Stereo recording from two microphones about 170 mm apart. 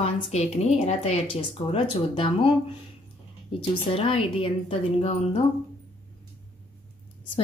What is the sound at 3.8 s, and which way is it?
Speech, 30° left (ahead or behind).